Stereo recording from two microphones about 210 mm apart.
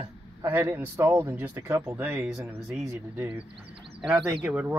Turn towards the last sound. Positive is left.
turn(degrees=-5)  # may be behind; listen again after turning